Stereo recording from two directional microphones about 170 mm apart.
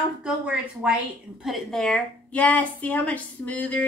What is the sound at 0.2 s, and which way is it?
A woman's voice, 5° right (ahead or behind).